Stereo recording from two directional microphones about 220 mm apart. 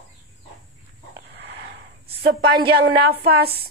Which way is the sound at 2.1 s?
45° right (ahead or behind).